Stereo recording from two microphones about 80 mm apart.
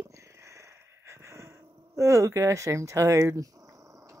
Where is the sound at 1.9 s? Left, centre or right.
Right.